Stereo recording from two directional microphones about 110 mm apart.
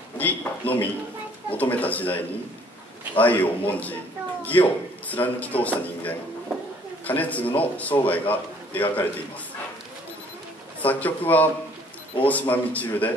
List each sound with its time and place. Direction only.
0.2 s a man's voice: 15° left (ahead or behind)
10.8 s a man's voice: 15° left (ahead or behind)